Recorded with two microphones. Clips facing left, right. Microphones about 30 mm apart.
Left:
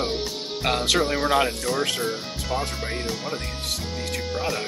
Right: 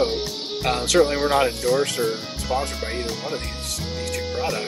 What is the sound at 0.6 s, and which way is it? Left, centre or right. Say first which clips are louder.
Speech: right 1 dB; left.